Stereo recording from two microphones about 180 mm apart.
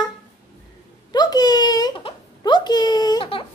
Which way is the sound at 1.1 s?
25° left (ahead or behind).